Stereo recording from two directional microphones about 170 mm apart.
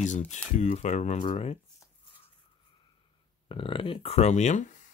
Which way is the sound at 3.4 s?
30° left (ahead or behind).